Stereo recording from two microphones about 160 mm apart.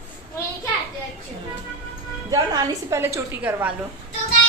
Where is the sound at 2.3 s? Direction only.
20° right (ahead or behind).